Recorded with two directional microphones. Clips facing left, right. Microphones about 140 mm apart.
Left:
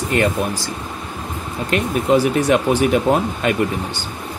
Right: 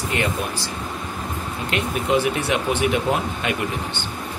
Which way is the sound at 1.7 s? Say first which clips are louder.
Left 5 dB; 40° left (ahead or behind).